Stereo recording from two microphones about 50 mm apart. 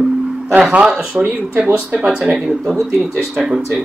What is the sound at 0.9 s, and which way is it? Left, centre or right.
Speech, centre.